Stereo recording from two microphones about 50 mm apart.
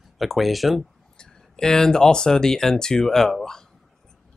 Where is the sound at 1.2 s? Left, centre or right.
Centre.